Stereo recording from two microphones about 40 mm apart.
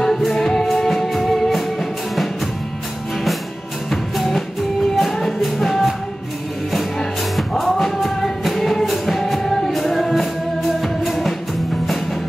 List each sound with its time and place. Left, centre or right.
0.0 s music: centre
3.9 s music: centre
7.3 s music: centre